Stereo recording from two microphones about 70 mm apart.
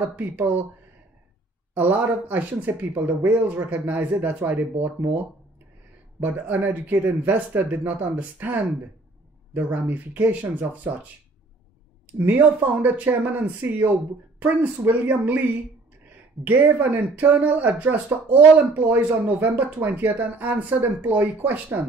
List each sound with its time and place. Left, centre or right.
0.0 s speech: right
1.7 s speech: right
12.2 s speech: right
16.4 s speech: right